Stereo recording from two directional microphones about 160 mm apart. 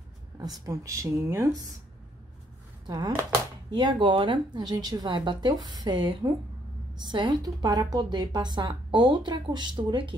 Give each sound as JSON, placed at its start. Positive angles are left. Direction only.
{"t": 0.4, "sound": "a woman's voice", "side_deg": -25}
{"t": 2.9, "sound": "a woman's voice", "side_deg": -20}